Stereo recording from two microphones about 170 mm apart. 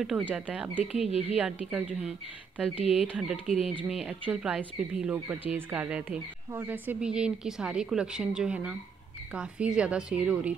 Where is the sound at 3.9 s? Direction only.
5° right (ahead or behind).